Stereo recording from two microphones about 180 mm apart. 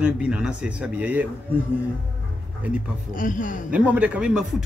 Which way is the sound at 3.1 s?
45° left (ahead or behind).